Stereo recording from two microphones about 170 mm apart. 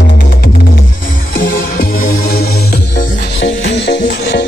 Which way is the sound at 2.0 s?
55° left (ahead or behind).